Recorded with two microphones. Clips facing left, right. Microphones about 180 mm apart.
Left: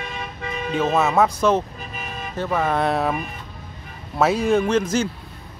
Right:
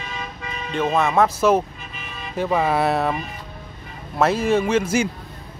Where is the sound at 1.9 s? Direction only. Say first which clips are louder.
Left 4 dB; 45° left (ahead or behind).